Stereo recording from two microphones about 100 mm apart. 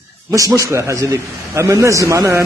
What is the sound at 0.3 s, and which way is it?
A man's voice, 30° right (ahead or behind).